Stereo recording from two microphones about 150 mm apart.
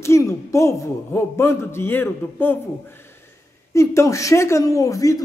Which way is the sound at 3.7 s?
20° left (ahead or behind).